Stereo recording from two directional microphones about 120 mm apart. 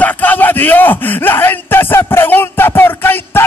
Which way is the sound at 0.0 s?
15° left (ahead or behind).